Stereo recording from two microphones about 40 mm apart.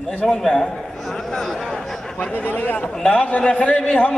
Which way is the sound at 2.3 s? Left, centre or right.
Left.